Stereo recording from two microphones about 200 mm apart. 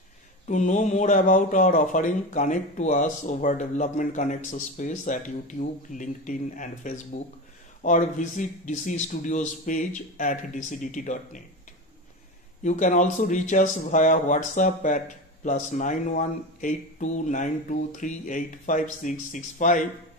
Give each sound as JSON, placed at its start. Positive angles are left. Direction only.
{"t": 0.5, "sound": "speech", "side_deg": 35}
{"t": 12.6, "sound": "speech", "side_deg": 40}